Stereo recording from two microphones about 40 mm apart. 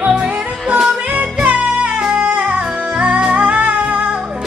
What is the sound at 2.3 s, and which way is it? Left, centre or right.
Music, right.